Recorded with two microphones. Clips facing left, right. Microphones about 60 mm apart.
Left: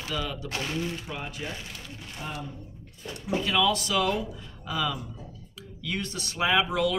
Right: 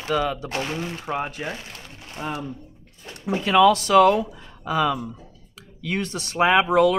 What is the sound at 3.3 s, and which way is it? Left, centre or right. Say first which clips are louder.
Speech: right 9 dB; right.